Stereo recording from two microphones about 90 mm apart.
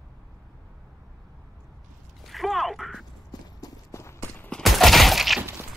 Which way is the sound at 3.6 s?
30° left (ahead or behind).